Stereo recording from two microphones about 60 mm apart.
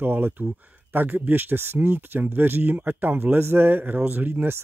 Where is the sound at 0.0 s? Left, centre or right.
Right.